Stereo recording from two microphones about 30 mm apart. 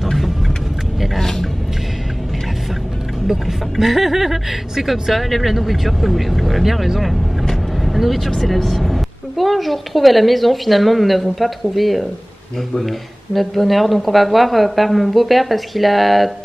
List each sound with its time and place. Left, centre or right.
0.0 s vehicle: centre
1.2 s a sound: centre
3.3 s speech: centre
7.8 s vehicle: centre
8.3 s speech: centre